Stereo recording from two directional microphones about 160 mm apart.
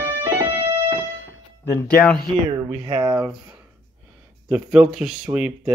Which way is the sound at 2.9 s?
25° right (ahead or behind).